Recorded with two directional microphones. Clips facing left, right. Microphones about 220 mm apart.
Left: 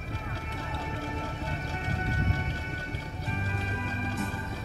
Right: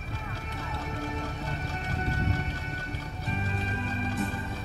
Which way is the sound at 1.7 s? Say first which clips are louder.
Even; 35° right (ahead or behind).